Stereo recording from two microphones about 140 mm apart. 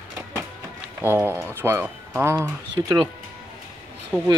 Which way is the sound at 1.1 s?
15° left (ahead or behind).